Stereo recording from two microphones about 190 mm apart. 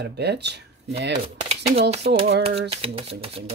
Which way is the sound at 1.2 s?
30° right (ahead or behind).